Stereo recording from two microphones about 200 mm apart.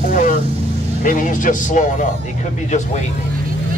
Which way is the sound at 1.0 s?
40° left (ahead or behind).